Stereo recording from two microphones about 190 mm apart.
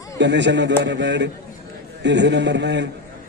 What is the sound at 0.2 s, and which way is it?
A man's voice, 65° right (ahead or behind).